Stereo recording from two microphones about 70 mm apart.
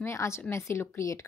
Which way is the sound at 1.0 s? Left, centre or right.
Left.